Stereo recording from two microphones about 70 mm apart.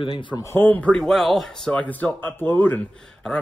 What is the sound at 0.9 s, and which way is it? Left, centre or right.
Speech, centre.